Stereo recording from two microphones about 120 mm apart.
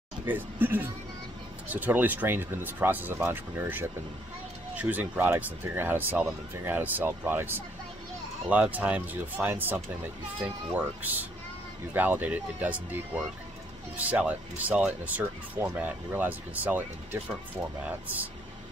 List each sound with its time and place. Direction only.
0.2 s speech: 15° right (ahead or behind)
13.9 s speech: 10° right (ahead or behind)